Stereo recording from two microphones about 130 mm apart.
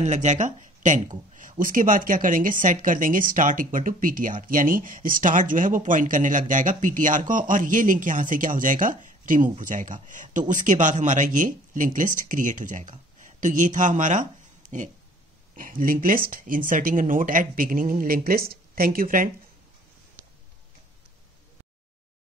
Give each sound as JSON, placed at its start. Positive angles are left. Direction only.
{"t": 0.0, "sound": "speech", "side_deg": -65}
{"t": 1.6, "sound": "speech", "side_deg": -90}
{"t": 15.5, "sound": "speech", "side_deg": -90}